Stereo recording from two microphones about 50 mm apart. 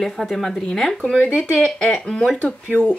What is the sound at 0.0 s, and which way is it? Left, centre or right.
Speech, centre.